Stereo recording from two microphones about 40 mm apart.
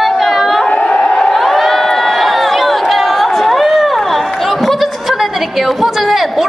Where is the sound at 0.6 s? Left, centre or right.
Left.